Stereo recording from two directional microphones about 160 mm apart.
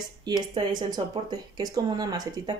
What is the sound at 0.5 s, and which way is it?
Speech, 25° right (ahead or behind).